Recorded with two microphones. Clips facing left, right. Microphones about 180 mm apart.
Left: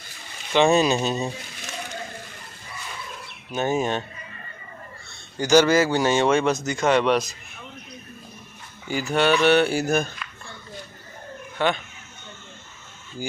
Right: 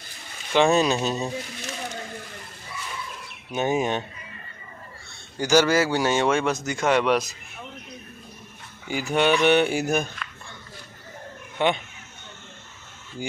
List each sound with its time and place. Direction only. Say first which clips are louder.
0.5 s speech: left 1 dB; centre (ahead or behind)
3.5 s speech: even; 15° right (ahead or behind)
5.4 s speech: left 2 dB; 10° right (ahead or behind)
8.8 s speech: left 1 dB; 15° right (ahead or behind)
11.5 s speech: right 1 dB; 20° right (ahead or behind)